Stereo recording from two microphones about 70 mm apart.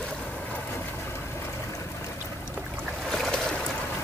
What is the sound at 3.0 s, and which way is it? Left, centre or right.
Boat, centre.